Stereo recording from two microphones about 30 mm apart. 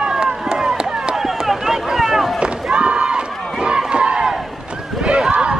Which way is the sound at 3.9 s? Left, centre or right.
Right.